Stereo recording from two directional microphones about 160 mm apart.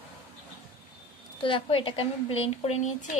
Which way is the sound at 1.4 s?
30° left (ahead or behind).